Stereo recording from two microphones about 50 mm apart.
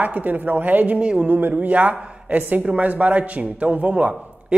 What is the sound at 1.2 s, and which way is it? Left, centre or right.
A man's voice, right.